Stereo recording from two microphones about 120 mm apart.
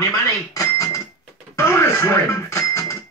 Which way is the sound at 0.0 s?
30° left (ahead or behind).